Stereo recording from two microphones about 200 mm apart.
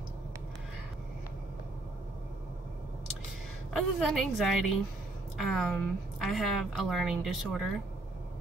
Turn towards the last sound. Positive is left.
turn(degrees=0)  # may be behind; listen again after turning